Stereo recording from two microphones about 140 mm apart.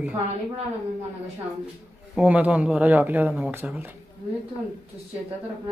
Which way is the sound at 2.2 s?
10° right (ahead or behind).